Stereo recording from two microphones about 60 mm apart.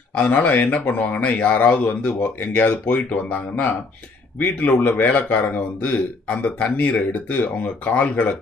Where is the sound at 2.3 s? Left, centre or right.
Left.